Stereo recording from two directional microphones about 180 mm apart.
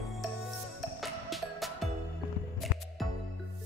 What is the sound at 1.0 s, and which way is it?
Music, centre (ahead or behind).